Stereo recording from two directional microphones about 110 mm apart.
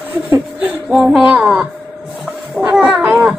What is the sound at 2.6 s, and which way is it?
Cat, 10° right (ahead or behind).